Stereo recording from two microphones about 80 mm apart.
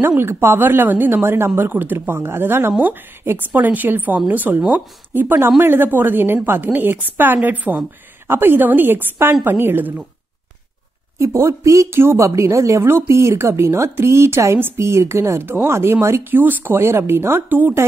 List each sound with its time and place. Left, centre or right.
0.2 s a woman's voice: right
11.1 s speech: right
12.0 s a woman's voice: right